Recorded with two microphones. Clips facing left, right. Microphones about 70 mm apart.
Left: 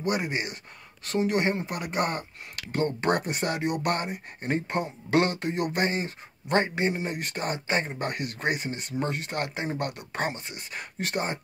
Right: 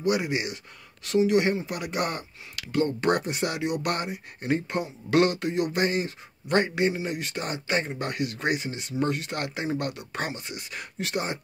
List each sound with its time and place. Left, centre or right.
0.0 s speech: left
6.9 s speech: left
9.7 s speech: left